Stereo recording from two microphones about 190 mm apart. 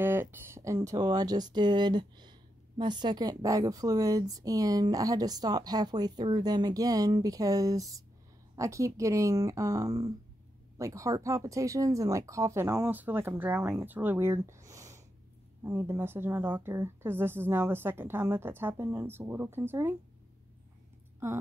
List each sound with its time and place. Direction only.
0.0 s a woman's voice: 10° right (ahead or behind)